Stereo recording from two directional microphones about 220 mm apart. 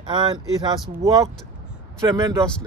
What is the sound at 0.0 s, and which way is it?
A man's voice, 20° right (ahead or behind).